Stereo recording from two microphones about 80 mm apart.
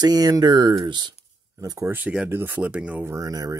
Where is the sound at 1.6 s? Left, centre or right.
Right.